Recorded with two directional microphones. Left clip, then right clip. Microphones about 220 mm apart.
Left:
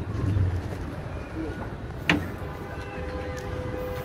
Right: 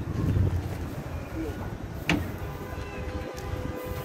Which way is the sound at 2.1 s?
35° right (ahead or behind).